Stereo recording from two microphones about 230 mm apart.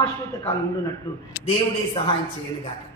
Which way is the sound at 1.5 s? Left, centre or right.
Left.